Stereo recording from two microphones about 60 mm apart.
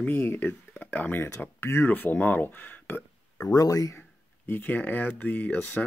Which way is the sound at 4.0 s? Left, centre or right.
Left.